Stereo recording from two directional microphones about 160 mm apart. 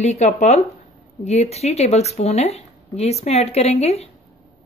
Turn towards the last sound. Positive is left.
turn(degrees=40)  # may be behind; listen again after turning